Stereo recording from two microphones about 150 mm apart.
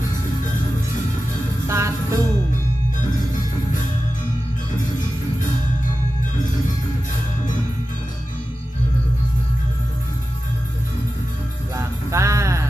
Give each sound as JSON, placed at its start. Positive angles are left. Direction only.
{"t": 1.7, "sound": "music", "side_deg": -20}
{"t": 11.7, "sound": "music", "side_deg": -20}